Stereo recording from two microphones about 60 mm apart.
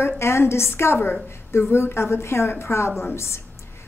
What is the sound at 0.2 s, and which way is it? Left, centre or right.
A woman's voice, left.